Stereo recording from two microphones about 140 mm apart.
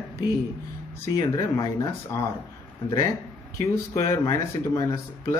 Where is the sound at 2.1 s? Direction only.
20° left (ahead or behind).